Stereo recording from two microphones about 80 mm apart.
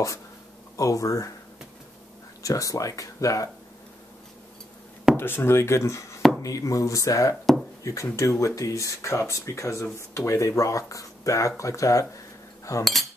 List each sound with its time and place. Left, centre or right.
0.7 s speech: left
2.4 s speech: left
5.1 s speech: left